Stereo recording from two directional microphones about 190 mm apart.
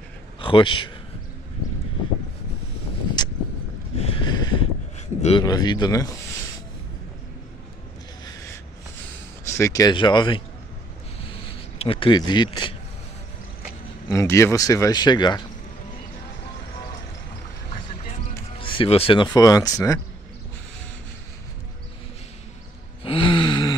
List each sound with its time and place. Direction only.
0.4 s a man's voice: 25° left (ahead or behind)
4.0 s a sound: 25° left (ahead or behind)
4.9 s a sound: 35° left (ahead or behind)
5.4 s speech: 20° left (ahead or behind)
9.5 s speech: 15° left (ahead or behind)
11.8 s speech: 30° left (ahead or behind)
14.0 s speech: 15° left (ahead or behind)
17.6 s vehicle: 30° left (ahead or behind)
18.6 s speech: 30° left (ahead or behind)
19.3 s speech: 20° left (ahead or behind)
23.0 s gasp: 25° left (ahead or behind)